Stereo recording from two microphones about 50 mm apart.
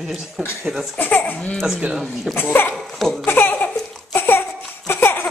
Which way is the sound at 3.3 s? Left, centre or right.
Left.